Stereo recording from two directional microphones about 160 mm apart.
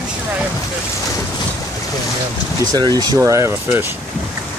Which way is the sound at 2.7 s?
25° right (ahead or behind).